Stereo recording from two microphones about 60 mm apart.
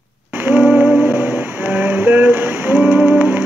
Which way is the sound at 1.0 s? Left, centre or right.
Right.